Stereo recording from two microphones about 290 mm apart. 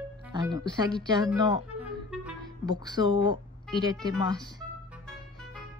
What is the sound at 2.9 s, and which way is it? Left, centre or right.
Speech, centre.